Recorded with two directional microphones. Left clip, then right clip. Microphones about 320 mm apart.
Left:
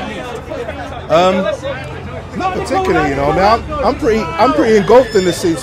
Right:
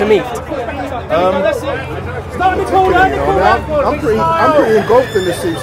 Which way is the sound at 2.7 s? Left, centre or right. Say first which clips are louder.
Right 3 dB; left.